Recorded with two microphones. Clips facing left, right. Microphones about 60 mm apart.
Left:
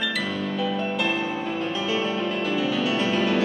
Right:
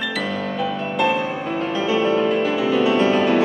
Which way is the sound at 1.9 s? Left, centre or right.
Right.